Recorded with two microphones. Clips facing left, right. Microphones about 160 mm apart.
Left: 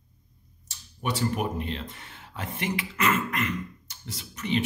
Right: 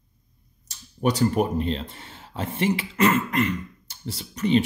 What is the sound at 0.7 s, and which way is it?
Speech, 40° right (ahead or behind).